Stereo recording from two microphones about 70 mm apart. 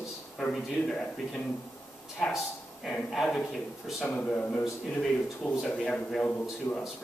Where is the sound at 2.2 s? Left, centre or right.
Centre.